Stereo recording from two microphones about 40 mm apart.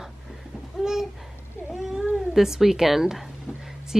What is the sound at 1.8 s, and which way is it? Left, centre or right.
Cat, centre.